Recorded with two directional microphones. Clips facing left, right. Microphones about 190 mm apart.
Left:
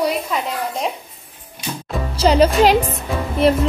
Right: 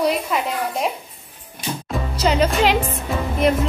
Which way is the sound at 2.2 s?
35° left (ahead or behind).